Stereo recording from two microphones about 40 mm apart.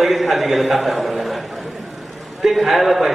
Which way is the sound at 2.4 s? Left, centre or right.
Centre.